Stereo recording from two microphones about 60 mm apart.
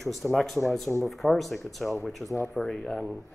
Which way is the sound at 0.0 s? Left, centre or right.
Centre.